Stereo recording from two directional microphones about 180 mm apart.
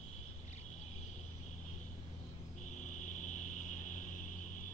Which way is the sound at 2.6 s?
45° left (ahead or behind).